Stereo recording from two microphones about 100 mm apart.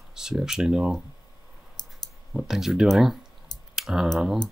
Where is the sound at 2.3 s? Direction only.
5° right (ahead or behind).